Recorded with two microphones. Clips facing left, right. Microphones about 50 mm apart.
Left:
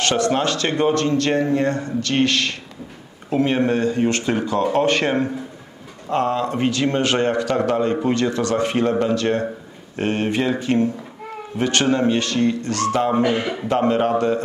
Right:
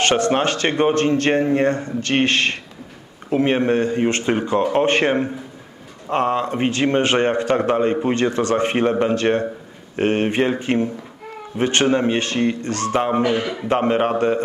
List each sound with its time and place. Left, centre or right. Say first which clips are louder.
0.0 s a man's voice: right 2 dB; right
13.1 s a man's voice: even; centre